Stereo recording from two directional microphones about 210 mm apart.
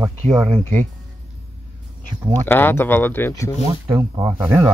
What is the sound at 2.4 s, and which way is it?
Speech, 10° left (ahead or behind).